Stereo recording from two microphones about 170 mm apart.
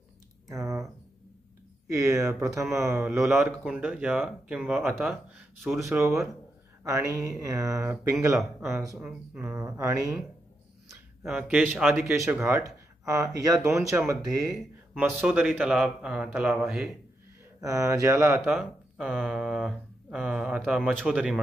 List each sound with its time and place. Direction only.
0.5 s speech: 15° right (ahead or behind)
1.9 s speech: 20° right (ahead or behind); by 5.9 s centre (ahead or behind)
5.9 s speech: 15° right (ahead or behind)
11.2 s speech: 10° right (ahead or behind)
17.6 s speech: 20° right (ahead or behind)
18.5 s speech: 5° right (ahead or behind)